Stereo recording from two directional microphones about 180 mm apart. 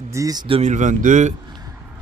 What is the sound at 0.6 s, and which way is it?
Speech, 40° right (ahead or behind).